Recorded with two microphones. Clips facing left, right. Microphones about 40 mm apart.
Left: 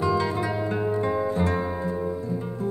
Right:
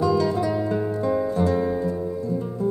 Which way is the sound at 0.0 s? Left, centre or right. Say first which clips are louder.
Right 3 dB; left.